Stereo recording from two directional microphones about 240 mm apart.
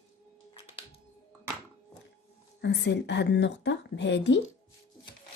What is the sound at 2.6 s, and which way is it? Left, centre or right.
A woman's voice, left.